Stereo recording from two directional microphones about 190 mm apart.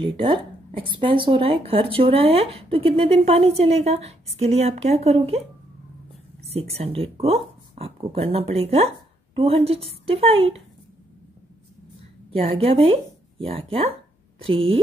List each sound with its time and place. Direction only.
0.0 s speech: 30° right (ahead or behind)
6.5 s speech: 30° right (ahead or behind)
12.3 s speech: 30° right (ahead or behind)